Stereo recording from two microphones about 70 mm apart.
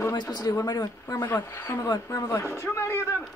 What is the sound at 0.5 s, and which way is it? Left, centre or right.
Speech, left.